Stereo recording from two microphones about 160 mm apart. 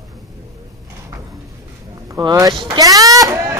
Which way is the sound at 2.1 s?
20° right (ahead or behind).